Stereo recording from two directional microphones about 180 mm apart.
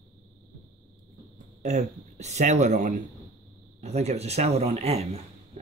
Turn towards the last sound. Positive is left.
turn(degrees=-35)  # may be behind; listen again after turning